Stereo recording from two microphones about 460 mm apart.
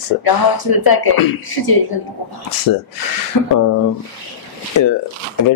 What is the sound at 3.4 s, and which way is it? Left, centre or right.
Speech, left.